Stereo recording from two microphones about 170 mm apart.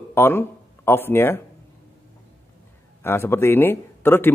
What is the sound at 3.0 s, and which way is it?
A man's voice, 15° left (ahead or behind).